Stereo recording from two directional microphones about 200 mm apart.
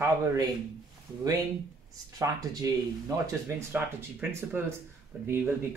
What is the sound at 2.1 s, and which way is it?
Speech, 15° right (ahead or behind).